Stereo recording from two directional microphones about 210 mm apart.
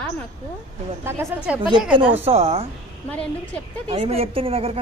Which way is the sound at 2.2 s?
30° right (ahead or behind).